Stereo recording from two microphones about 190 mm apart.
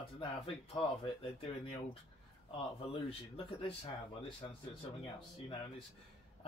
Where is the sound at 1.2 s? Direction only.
30° left (ahead or behind).